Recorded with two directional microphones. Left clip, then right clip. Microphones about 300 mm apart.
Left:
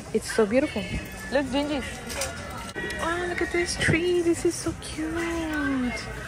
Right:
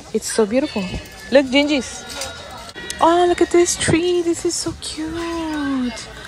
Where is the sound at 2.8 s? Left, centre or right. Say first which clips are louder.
Right 14 dB; right.